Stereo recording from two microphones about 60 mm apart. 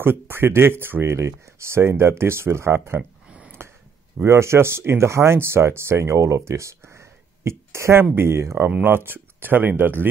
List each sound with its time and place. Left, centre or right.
0.0 s speech: right
3.0 s a sound: centre
4.2 s speech: right
8.0 s speech: right
8.6 s speech: right